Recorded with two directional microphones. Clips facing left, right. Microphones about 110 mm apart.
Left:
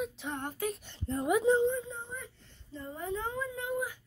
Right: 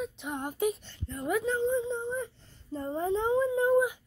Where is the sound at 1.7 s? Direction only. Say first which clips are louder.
Right 8 dB; 20° right (ahead or behind).